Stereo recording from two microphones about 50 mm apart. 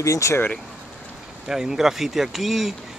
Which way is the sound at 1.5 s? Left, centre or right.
Centre.